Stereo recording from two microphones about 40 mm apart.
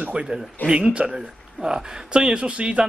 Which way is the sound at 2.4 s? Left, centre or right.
Right.